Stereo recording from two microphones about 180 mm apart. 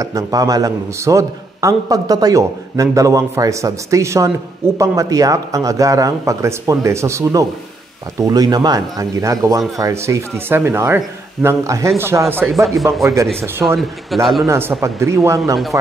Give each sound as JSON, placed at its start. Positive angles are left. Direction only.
{"t": 0.0, "sound": "a man's voice", "side_deg": -20}
{"t": 12.6, "sound": "speech", "side_deg": 0}
{"t": 13.0, "sound": "a man's voice", "side_deg": -15}
{"t": 13.7, "sound": "speech", "side_deg": 0}
{"t": 14.4, "sound": "a man's voice", "side_deg": -15}